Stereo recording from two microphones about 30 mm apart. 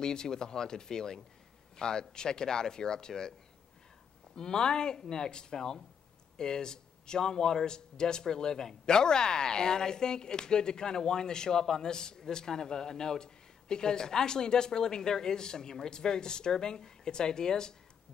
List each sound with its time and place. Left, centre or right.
0.0 s speech: left
4.4 s speech: left